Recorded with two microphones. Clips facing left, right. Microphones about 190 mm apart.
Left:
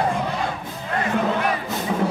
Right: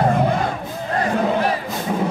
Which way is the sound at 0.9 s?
35° right (ahead or behind).